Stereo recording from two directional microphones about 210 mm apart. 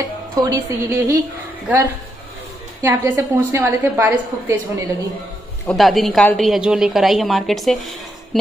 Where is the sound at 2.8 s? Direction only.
10° right (ahead or behind).